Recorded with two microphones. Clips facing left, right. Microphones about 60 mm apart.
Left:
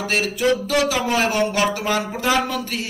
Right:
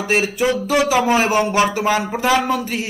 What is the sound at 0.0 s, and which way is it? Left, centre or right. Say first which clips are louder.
Speech: right 4 dB; centre.